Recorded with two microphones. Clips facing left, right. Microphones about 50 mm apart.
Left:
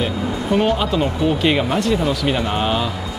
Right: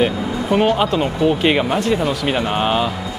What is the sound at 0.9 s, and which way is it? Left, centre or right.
Speech, centre.